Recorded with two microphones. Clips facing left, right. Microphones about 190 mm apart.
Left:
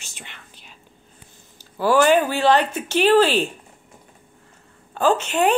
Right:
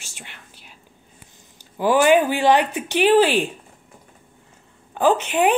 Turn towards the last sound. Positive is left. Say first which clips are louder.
# right 1 dB
turn(degrees=-10)  # may be behind; listen again after turning